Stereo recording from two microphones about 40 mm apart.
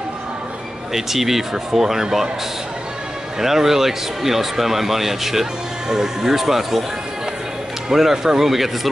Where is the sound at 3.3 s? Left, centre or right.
Centre.